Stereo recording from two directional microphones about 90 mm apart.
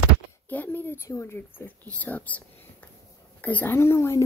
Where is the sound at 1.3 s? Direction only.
20° left (ahead or behind).